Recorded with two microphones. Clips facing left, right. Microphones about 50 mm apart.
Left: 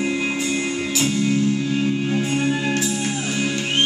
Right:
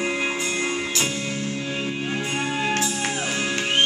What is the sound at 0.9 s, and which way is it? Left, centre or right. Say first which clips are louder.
Music: left 6 dB; centre.